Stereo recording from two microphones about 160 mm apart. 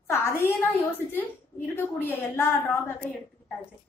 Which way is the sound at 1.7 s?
10° left (ahead or behind).